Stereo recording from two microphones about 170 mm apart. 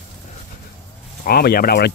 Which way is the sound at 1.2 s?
60° left (ahead or behind).